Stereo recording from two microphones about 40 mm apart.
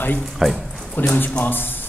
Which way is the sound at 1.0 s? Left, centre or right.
Left.